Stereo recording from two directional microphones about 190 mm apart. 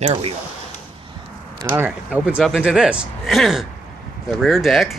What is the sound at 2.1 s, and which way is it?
Speech, 5° right (ahead or behind).